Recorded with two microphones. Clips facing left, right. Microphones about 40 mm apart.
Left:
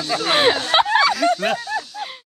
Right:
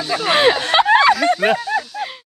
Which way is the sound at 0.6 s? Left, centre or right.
Right.